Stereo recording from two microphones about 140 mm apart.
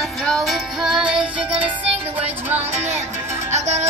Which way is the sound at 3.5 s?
55° right (ahead or behind).